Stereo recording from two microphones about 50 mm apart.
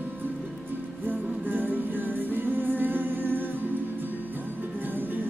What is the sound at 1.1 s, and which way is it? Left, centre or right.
Music, right.